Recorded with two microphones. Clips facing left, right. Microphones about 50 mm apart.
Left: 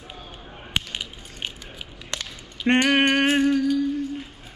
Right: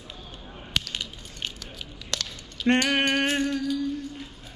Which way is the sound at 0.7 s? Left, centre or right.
Centre.